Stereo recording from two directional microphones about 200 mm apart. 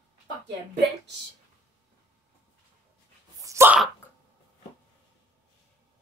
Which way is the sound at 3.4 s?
15° right (ahead or behind).